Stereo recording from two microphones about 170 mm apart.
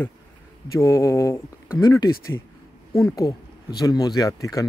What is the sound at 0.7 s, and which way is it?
Speech, 15° left (ahead or behind).